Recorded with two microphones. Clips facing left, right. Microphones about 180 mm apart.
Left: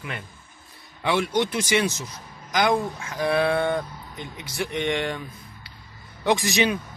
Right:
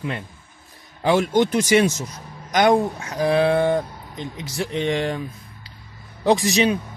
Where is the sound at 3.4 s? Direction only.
15° right (ahead or behind).